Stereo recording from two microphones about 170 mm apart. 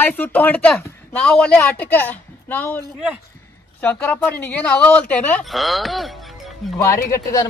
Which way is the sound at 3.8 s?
10° left (ahead or behind).